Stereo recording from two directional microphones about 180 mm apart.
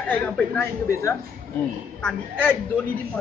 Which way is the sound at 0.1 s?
15° left (ahead or behind).